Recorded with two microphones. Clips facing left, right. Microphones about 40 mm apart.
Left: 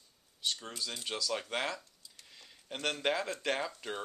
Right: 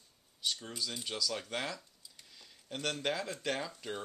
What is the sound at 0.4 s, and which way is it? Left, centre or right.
Speech, centre.